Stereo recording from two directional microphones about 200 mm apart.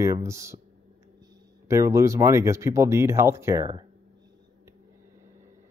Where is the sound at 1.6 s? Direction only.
15° right (ahead or behind).